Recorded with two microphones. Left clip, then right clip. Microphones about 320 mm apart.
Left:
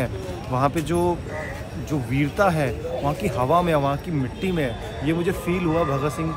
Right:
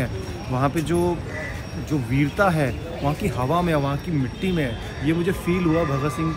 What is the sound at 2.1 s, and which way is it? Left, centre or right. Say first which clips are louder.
Speech: even; centre.